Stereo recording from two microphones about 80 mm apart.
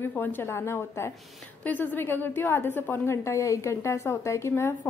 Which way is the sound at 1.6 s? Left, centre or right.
Left.